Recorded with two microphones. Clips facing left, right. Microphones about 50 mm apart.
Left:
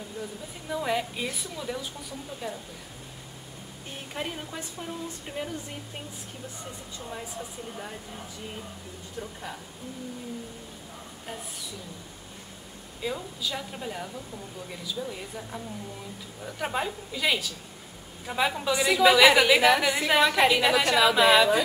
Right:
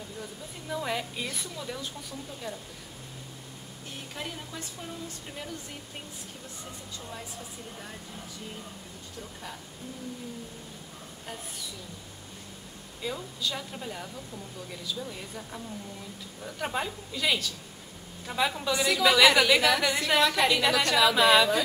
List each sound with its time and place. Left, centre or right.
0.2 s a woman's voice: centre
4.1 s speech: left
7.0 s a woman's voice: centre
13.0 s a woman's voice: centre